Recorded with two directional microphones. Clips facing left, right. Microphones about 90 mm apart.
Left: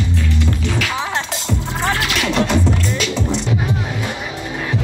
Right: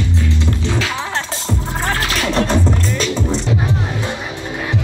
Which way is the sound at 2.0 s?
35° right (ahead or behind).